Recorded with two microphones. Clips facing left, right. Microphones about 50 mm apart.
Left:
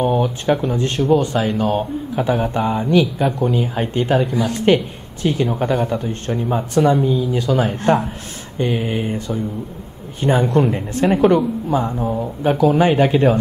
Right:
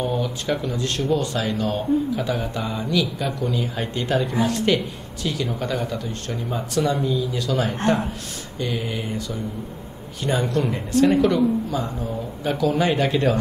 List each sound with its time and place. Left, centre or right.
0.0 s speech: left
10.4 s speech: left